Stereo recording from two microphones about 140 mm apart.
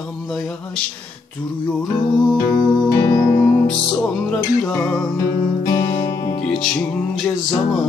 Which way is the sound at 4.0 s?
5° left (ahead or behind).